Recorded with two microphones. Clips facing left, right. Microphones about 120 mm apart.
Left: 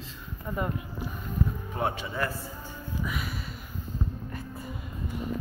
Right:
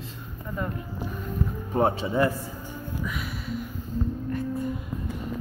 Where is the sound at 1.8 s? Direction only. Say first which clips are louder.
Right 8 dB; 30° right (ahead or behind).